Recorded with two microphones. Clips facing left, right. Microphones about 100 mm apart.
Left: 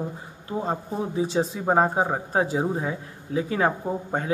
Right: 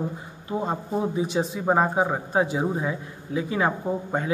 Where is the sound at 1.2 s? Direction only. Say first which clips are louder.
Left 1 dB; 30° left (ahead or behind).